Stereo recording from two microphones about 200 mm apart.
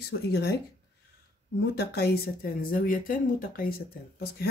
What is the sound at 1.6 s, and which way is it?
Speech, 55° left (ahead or behind).